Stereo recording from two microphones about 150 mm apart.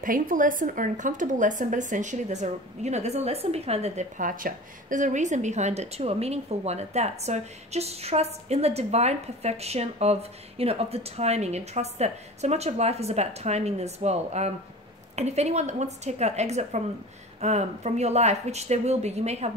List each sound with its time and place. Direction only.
0.0 s a woman's voice: 65° right (ahead or behind); by 19.5 s 45° right (ahead or behind)